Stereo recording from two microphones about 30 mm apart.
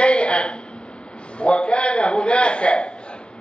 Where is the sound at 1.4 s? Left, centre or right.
Left.